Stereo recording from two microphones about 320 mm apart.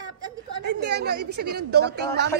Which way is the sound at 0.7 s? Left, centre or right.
Right.